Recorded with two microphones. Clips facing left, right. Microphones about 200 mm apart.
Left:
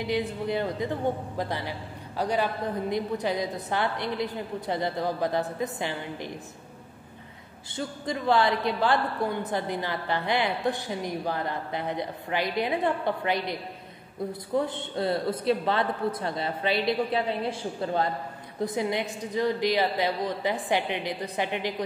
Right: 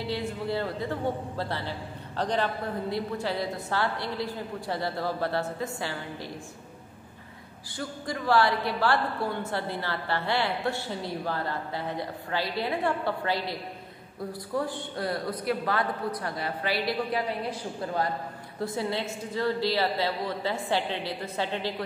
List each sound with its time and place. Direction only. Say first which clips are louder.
0.0 s a man's voice: left 3 dB; 15° left (ahead or behind)
7.7 s a man's voice: left 2 dB; 20° left (ahead or behind)